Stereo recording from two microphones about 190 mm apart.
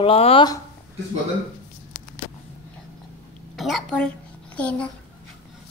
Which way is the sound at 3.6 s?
Centre (ahead or behind).